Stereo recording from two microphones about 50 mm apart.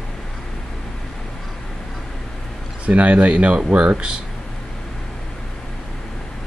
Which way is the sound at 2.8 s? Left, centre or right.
Right.